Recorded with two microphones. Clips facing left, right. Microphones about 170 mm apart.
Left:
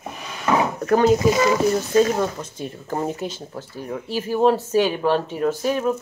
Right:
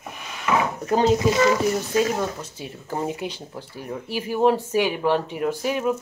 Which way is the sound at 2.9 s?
15° right (ahead or behind).